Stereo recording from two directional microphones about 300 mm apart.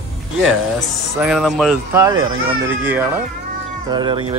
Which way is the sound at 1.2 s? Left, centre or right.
Centre.